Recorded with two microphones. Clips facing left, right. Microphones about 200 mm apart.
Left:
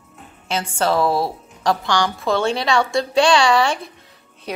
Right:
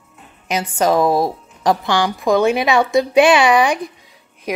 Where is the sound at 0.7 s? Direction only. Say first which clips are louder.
Right 4 dB; 15° right (ahead or behind).